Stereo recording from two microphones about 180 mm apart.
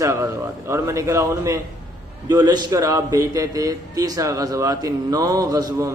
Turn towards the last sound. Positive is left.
turn(degrees=-20)  # may be behind; listen again after turning